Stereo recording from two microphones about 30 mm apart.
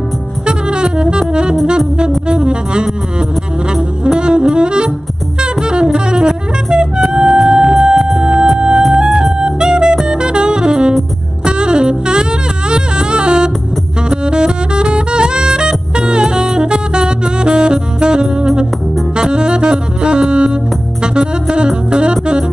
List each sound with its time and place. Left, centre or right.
0.5 s music: right
4.0 s saxophone: right
8.2 s music: right
10.0 s saxophone: right
18.2 s music: right
19.1 s saxophone: right
21.0 s music: right